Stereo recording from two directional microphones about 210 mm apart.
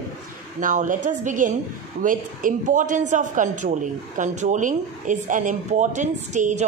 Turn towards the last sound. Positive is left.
turn(degrees=-35)  # may be behind; listen again after turning